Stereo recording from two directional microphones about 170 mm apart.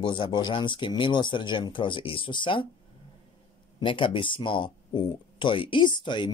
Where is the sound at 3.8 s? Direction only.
30° left (ahead or behind).